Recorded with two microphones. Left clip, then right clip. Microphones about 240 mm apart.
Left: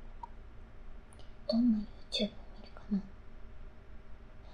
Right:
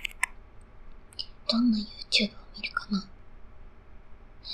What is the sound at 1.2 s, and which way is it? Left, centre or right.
Whispering, right.